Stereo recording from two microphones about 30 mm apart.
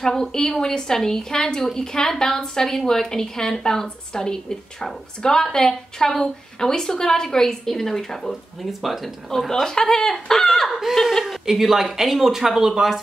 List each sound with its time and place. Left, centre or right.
0.0 s a woman's voice: centre
8.8 s speech: centre
9.5 s a woman's voice: centre
10.7 s speech: centre